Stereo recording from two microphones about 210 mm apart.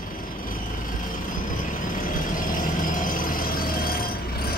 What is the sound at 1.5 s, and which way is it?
Vehicle, 40° left (ahead or behind).